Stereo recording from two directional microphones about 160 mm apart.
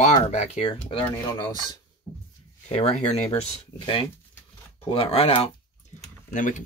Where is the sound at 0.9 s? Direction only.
30° left (ahead or behind).